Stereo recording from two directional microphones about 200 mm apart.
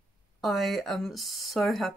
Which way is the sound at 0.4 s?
Centre (ahead or behind).